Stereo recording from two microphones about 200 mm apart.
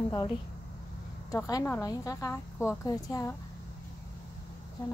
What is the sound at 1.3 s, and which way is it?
A woman's voice, 15° left (ahead or behind).